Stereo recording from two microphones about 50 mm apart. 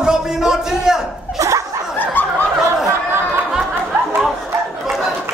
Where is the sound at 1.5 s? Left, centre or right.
Right.